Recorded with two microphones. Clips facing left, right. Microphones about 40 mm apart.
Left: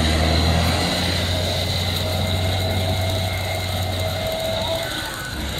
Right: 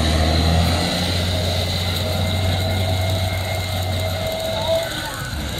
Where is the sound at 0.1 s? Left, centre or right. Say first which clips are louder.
Even; left.